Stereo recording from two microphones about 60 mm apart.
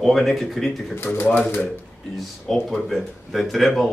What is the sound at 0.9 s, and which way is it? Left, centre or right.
Speech, left.